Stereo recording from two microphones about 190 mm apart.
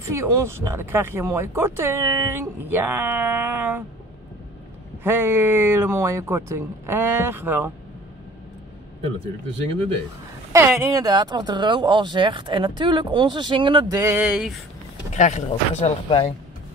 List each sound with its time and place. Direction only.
0.1 s speech: 15° right (ahead or behind)
5.0 s speech: 10° right (ahead or behind)
10.5 s speech: 15° right (ahead or behind)
15.1 s speech: 40° left (ahead or behind)